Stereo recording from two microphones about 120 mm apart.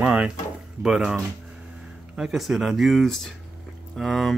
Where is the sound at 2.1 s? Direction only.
5° right (ahead or behind).